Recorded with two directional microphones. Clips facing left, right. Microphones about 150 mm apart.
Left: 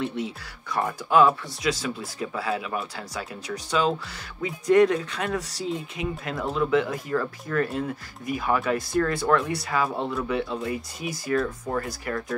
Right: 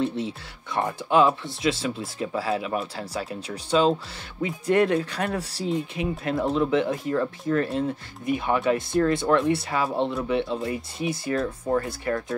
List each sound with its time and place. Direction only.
0.0 s speech: 30° right (ahead or behind)